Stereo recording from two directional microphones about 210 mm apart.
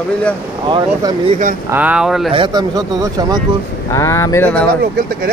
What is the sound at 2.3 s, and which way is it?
Speech, 20° right (ahead or behind).